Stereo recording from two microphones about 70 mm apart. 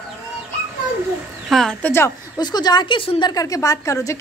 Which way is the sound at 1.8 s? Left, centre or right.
Left.